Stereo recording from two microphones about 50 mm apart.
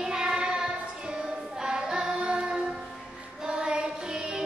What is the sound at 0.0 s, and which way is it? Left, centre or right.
Child singing, centre.